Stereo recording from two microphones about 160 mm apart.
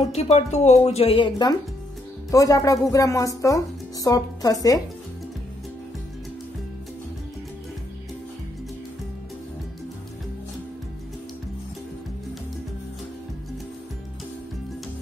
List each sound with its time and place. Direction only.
0.0 s speech: 40° left (ahead or behind); by 4.8 s 25° left (ahead or behind)